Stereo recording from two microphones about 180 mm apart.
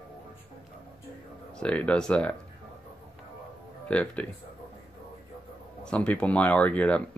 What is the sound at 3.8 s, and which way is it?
Speech, 5° left (ahead or behind).